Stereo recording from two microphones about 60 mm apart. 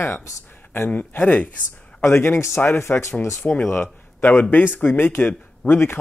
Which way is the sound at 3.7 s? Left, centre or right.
Left.